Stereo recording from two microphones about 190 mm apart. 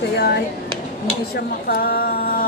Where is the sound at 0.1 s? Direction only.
60° left (ahead or behind).